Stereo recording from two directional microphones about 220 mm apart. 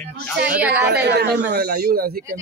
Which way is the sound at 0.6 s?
5° right (ahead or behind).